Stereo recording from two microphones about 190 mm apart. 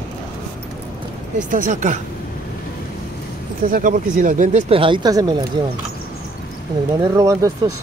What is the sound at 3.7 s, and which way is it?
Speech, 45° right (ahead or behind).